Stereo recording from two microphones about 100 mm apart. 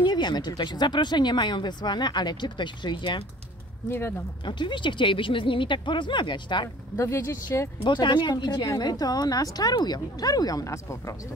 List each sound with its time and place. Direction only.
0.0 s speech: 50° left (ahead or behind)
4.5 s speech: 50° left (ahead or behind)
7.0 s speech: 30° left (ahead or behind)
7.8 s a woman's voice: 50° left (ahead or behind); by 11.1 s 30° left (ahead or behind)